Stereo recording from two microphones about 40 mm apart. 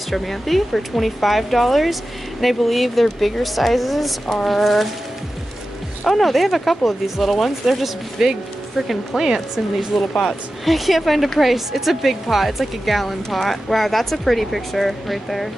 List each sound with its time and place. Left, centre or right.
0.1 s speech: centre
6.0 s speech: centre